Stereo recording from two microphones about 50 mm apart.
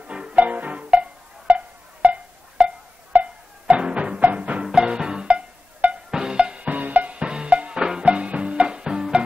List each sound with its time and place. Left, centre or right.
0.0 s music: right
4.2 s music: right
4.6 s music: centre